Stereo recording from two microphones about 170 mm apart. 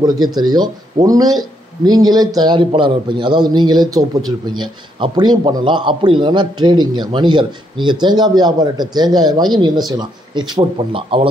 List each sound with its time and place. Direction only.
0.0 s a man's voice: 25° right (ahead or behind)